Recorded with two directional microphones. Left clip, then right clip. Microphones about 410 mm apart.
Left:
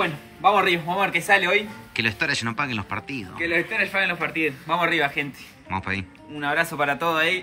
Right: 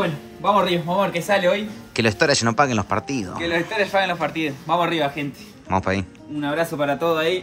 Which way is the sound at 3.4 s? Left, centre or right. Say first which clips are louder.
Right 1 dB; right.